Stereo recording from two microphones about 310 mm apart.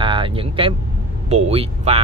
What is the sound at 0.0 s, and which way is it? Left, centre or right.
Vehicle, centre.